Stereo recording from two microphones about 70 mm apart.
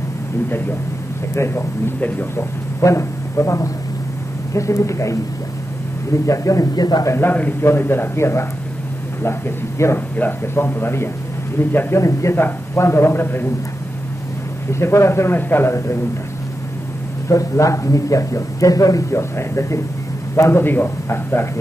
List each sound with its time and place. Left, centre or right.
1.3 s a man's voice: left
2.0 s speech: left
2.3 s speech: left
6.2 s a man's voice: left
7.1 s a man's voice: left
12.0 s a man's voice: left
14.7 s a man's voice: left
17.3 s a man's voice: left